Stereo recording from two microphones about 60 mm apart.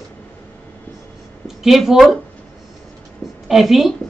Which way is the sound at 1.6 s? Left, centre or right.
Centre.